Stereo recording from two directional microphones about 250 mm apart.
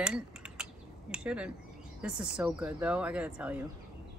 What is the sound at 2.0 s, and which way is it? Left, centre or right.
Speech, centre.